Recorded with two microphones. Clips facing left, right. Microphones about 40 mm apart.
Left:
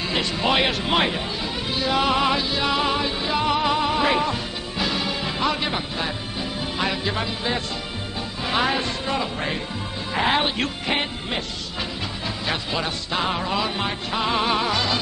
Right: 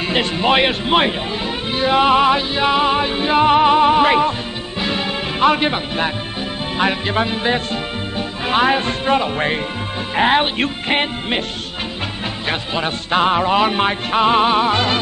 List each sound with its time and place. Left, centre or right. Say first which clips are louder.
0.0 s music: right 5 dB; right
12.4 s music: right 5 dB; right